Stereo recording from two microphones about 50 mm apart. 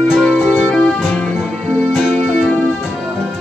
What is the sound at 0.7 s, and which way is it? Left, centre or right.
Music, centre.